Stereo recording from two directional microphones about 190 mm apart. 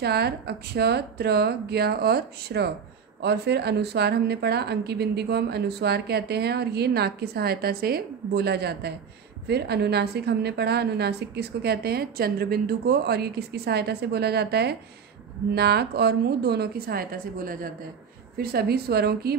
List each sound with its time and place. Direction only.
0.0 s a woman's voice: 60° right (ahead or behind)